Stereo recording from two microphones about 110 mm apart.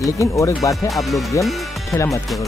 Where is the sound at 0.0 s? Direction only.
30° left (ahead or behind).